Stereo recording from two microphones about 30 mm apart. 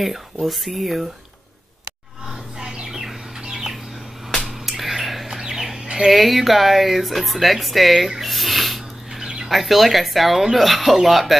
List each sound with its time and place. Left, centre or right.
0.0 s speech: centre
2.6 s squawk: right
4.5 s a sound: centre
5.4 s chicken: centre
6.0 s speech: centre
8.2 s a sound: centre
9.5 s speech: centre